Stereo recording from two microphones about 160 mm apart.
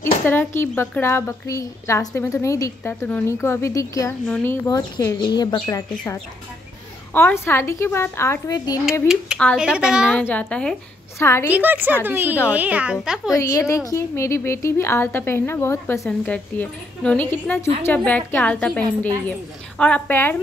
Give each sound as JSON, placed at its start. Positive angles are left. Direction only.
{"t": 0.0, "sound": "a woman's voice", "side_deg": 10}
{"t": 7.2, "sound": "a woman's voice", "side_deg": 15}
{"t": 9.0, "sound": "speech", "side_deg": -5}
{"t": 10.1, "sound": "a woman's voice", "side_deg": 5}
{"t": 11.5, "sound": "a woman's voice", "side_deg": -10}
{"t": 13.4, "sound": "a woman's voice", "side_deg": 20}